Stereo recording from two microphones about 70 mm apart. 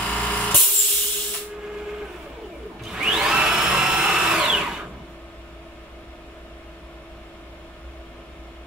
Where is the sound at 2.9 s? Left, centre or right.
Centre.